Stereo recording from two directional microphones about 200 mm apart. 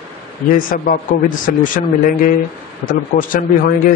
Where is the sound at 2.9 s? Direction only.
45° left (ahead or behind).